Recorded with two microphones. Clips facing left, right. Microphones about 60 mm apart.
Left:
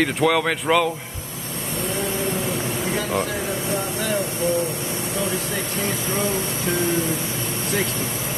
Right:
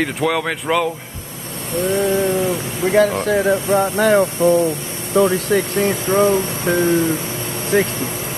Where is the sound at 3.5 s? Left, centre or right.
Right.